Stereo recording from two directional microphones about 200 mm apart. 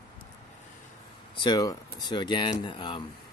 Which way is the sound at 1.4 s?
20° left (ahead or behind).